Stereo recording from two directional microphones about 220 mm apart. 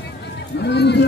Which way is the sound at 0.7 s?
50° left (ahead or behind).